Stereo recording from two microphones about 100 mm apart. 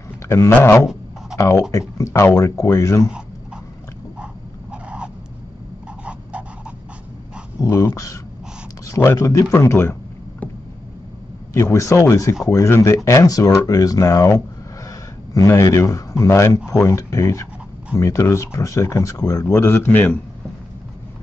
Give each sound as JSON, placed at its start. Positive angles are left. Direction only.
{"t": 0.3, "sound": "speech", "side_deg": 25}
{"t": 1.3, "sound": "speech", "side_deg": 35}
{"t": 4.2, "sound": "dog", "side_deg": -10}
{"t": 7.6, "sound": "speech", "side_deg": 30}
{"t": 11.5, "sound": "speech", "side_deg": 30}